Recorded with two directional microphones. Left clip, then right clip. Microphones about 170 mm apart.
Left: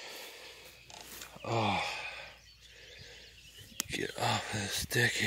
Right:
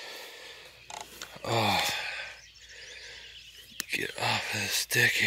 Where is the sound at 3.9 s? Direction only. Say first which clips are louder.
Right 4 dB; 20° left (ahead or behind).